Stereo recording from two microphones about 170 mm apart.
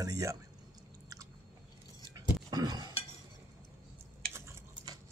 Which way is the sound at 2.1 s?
25° right (ahead or behind).